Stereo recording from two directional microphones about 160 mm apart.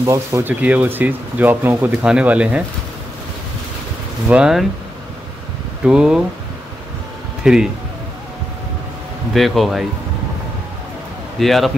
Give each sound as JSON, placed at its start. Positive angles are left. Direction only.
{"t": 0.0, "sound": "speech", "side_deg": -20}
{"t": 4.3, "sound": "speech", "side_deg": -5}
{"t": 5.9, "sound": "speech", "side_deg": -5}
{"t": 7.4, "sound": "speech", "side_deg": -5}
{"t": 9.3, "sound": "speech", "side_deg": 0}
{"t": 11.3, "sound": "speech", "side_deg": 0}